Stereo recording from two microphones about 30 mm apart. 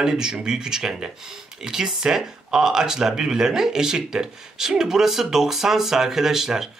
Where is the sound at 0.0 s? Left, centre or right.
Right.